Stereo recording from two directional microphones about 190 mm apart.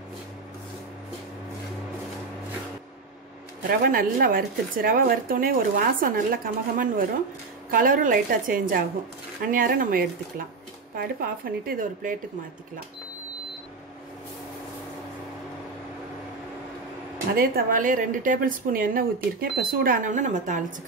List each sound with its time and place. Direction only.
3.6 s speech: 50° right (ahead or behind)
17.4 s speech: 50° right (ahead or behind)